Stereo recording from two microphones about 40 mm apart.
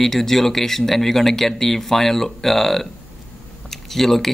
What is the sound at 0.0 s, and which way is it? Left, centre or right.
Speech, centre.